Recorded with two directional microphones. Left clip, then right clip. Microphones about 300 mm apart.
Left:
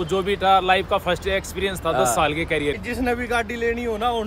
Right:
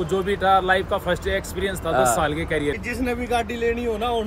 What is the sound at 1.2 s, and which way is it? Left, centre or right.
Speech, centre.